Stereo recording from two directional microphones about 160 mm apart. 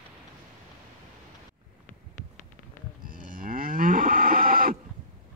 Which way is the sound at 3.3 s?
60° right (ahead or behind).